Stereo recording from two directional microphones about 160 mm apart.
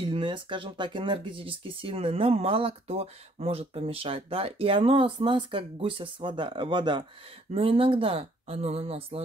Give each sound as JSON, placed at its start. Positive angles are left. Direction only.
{"t": 0.0, "sound": "speech", "side_deg": -30}